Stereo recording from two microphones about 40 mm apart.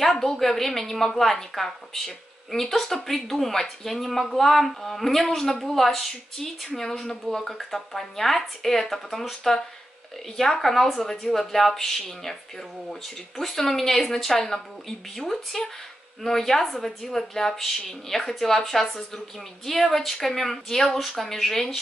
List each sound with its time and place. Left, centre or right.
0.0 s a woman's voice: centre
13.4 s a woman's voice: centre